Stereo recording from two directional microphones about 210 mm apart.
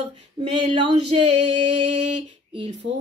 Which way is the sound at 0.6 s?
30° right (ahead or behind).